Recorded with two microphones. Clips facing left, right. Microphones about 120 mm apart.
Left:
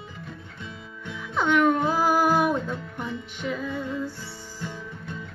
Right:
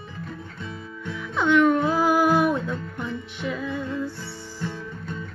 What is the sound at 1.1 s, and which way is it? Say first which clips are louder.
Music: right 3 dB; 45° left (ahead or behind).